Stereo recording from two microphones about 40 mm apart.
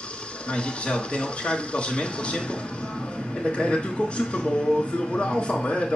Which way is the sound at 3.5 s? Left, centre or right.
Left.